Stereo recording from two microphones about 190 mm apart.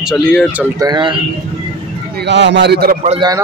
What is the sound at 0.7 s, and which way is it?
Speech, 20° right (ahead or behind).